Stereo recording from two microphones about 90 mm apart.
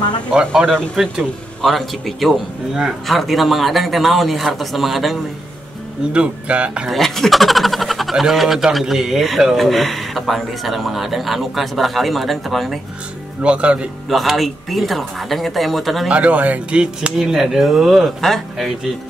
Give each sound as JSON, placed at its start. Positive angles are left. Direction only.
{"t": 0.3, "sound": "speech", "side_deg": -15}
{"t": 1.0, "sound": "speech", "side_deg": 0}
{"t": 6.1, "sound": "speech", "side_deg": -10}
{"t": 6.9, "sound": "speech", "side_deg": 0}
{"t": 13.4, "sound": "speech", "side_deg": -15}
{"t": 14.0, "sound": "speech", "side_deg": 0}
{"t": 16.1, "sound": "speech", "side_deg": -15}